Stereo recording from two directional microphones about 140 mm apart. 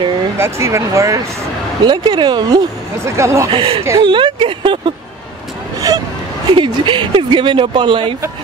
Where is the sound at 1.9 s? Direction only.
35° right (ahead or behind).